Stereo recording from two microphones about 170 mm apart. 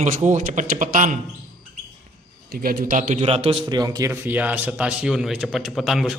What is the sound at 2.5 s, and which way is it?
Speech, 60° right (ahead or behind).